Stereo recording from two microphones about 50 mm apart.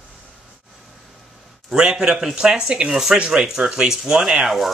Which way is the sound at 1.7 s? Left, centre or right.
Centre.